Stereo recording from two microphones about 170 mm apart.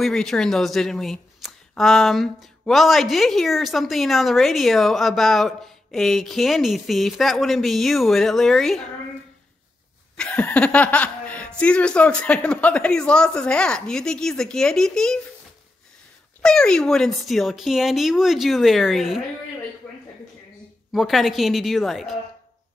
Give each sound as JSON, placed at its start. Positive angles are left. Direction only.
{"t": 0.0, "sound": "speech", "side_deg": 0}
{"t": 10.1, "sound": "speech", "side_deg": 5}
{"t": 16.4, "sound": "speech", "side_deg": 5}
{"t": 20.9, "sound": "speech", "side_deg": 0}